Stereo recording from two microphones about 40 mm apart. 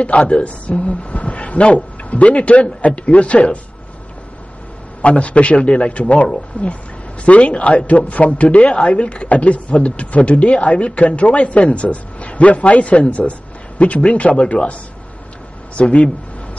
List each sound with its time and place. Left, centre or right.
0.0 s a woman's voice: left
5.0 s a woman's voice: left